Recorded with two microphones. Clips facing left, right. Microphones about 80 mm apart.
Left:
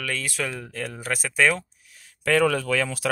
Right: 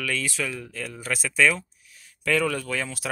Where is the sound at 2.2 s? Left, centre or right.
Left.